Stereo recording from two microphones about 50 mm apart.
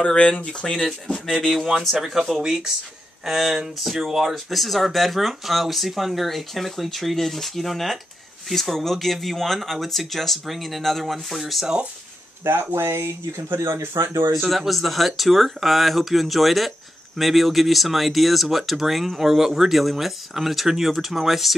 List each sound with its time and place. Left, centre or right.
0.0 s speech: centre
11.6 s speech: centre
12.4 s speech: right
13.6 s speech: right
14.6 s speech: centre